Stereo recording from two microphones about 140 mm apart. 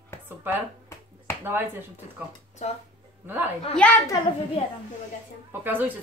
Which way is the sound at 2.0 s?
55° left (ahead or behind).